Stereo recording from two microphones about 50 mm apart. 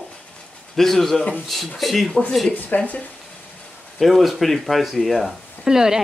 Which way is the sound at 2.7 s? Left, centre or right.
Left.